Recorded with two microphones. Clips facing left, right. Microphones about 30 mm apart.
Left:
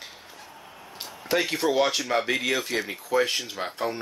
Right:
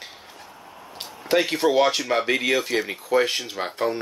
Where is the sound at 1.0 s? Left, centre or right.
Centre.